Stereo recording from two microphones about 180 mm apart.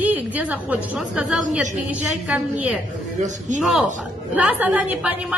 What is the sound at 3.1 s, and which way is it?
Speech, 45° right (ahead or behind).